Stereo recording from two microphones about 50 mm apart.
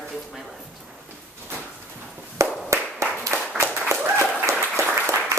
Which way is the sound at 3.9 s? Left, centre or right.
Right.